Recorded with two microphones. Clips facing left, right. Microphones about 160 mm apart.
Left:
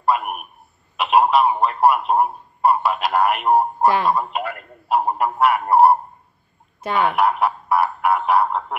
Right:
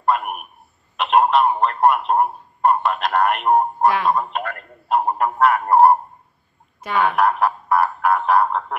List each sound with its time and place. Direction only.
0.0 s a man's voice: 5° left (ahead or behind)
6.8 s speech: 25° left (ahead or behind)
7.1 s a man's voice: 5° left (ahead or behind)